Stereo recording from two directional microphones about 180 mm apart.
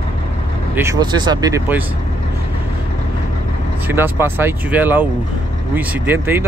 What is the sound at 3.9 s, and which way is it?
Speech, 10° right (ahead or behind).